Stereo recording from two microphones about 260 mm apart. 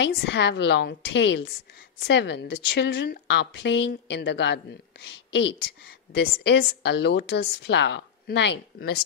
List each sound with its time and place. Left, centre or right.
0.0 s a woman's voice: left